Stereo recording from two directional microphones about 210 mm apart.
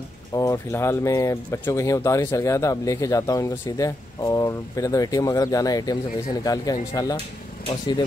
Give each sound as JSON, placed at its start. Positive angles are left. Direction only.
{"t": 0.3, "sound": "speech", "side_deg": 15}